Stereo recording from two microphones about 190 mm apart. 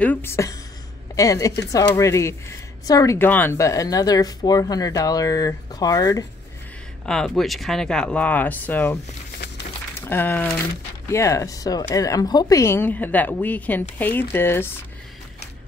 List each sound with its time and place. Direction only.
0.0 s a woman's voice: 10° left (ahead or behind)
7.1 s a woman's voice: centre (ahead or behind)